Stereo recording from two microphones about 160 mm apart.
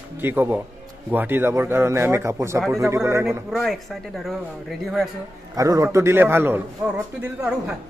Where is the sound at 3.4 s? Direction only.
Centre (ahead or behind).